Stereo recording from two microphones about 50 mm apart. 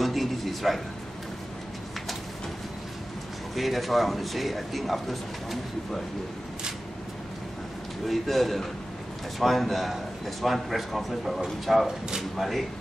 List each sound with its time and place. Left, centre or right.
0.0 s a sound: centre
3.5 s speech: centre
8.1 s speech: centre